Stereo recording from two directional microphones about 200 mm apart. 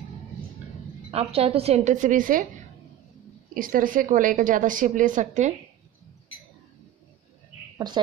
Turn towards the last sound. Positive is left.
turn(degrees=-20)  # may be behind; listen again after turning